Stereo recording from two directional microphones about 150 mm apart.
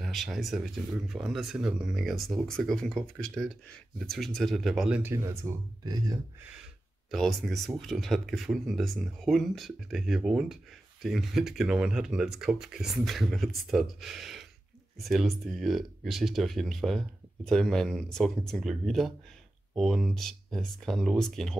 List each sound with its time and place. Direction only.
0.0 s speech: centre (ahead or behind)
5.1 s speech: 20° right (ahead or behind)
7.1 s speech: centre (ahead or behind)